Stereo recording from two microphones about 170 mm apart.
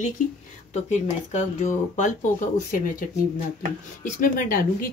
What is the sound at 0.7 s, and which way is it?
Speech, 45° left (ahead or behind).